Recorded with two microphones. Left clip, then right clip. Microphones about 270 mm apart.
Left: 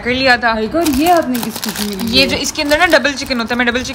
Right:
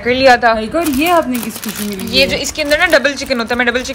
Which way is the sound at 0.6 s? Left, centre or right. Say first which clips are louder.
Even; right.